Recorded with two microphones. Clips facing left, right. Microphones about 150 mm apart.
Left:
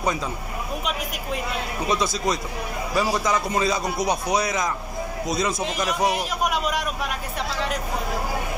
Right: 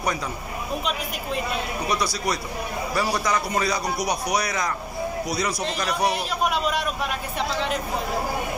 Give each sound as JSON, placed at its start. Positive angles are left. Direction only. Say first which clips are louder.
{"t": 1.9, "sound": "a man's voice", "louder": "left 3 dB", "side_deg": 25}
{"t": 5.8, "sound": "a man's voice", "louder": "left 1 dB", "side_deg": 20}